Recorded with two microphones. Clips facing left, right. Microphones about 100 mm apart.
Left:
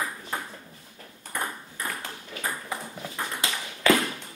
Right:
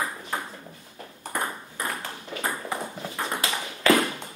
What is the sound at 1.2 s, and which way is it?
Ping, 25° right (ahead or behind).